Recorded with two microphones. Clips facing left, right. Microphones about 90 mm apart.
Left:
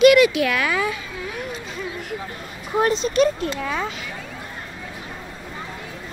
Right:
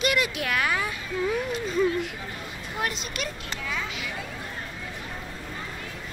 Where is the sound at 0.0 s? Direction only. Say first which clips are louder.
Left 13 dB; 90° left.